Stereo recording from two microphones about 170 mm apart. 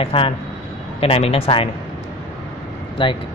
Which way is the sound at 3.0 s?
30° left (ahead or behind).